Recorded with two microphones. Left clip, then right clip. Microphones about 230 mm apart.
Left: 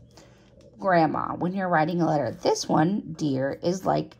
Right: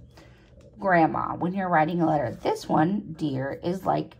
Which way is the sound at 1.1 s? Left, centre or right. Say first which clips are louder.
Even; left.